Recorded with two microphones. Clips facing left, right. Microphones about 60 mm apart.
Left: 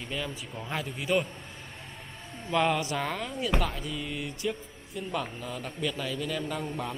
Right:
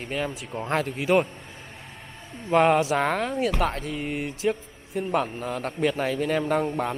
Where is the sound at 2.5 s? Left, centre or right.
Right.